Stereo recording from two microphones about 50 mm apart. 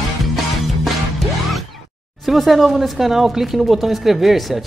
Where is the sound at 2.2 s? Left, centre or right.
Centre.